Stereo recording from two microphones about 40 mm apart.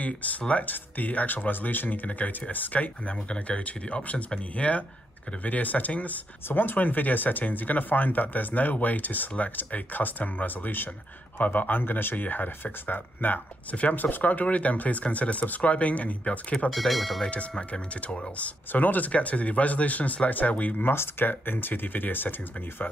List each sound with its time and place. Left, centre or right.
0.6 s speech: left
6.6 s speech: left
11.3 s speech: left
16.7 s speech: centre
17.2 s speech: left
18.7 s speech: left
20.8 s speech: left
21.3 s speech: left